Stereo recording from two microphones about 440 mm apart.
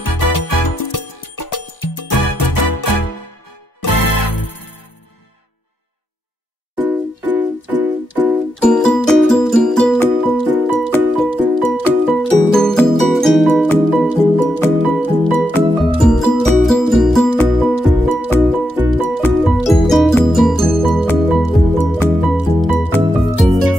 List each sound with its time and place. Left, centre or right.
0.0 s music: left
6.7 s music: centre